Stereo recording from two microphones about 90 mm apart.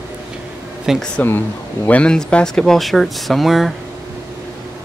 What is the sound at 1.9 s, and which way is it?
Speech, 10° left (ahead or behind).